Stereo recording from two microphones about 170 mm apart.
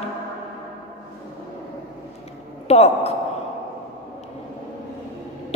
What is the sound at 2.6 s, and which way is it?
Speech, 40° left (ahead or behind).